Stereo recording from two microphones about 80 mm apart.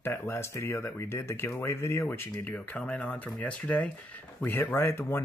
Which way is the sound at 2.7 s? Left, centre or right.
Centre.